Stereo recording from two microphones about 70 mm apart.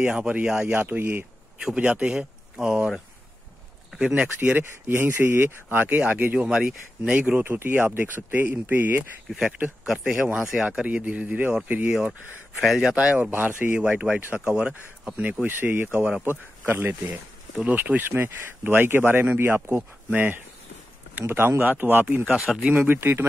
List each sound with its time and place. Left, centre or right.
0.0 s speech: centre
0.7 s speech: right
1.6 s speech: centre
4.0 s speech: centre
4.6 s speech: right
9.8 s speech: centre
12.5 s speech: centre
12.9 s speech: centre
13.7 s speech: centre
15.4 s speech: right
22.3 s speech: centre
22.7 s speech: right